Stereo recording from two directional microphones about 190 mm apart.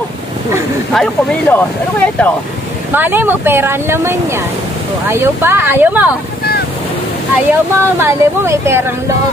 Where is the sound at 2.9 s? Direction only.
10° right (ahead or behind).